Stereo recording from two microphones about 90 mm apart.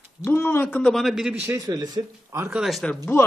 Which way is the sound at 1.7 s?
50° right (ahead or behind).